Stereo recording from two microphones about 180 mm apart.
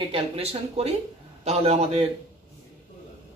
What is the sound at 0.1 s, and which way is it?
Speech, 35° right (ahead or behind).